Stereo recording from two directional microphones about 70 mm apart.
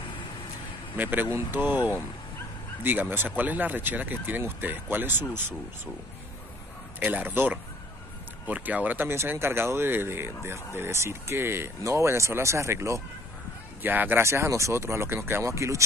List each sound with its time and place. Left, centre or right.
0.9 s speech: right
2.8 s speech: right
7.0 s speech: right
13.8 s speech: right
14.2 s speech: right
15.4 s speech: right